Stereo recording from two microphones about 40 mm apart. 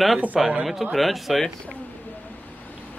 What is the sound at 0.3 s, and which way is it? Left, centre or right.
Speech, centre.